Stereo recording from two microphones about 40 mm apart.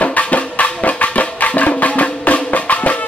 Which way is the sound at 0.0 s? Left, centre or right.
Left.